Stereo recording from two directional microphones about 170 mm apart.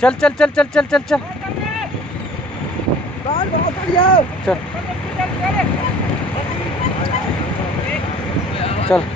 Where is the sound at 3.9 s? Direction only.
30° left (ahead or behind).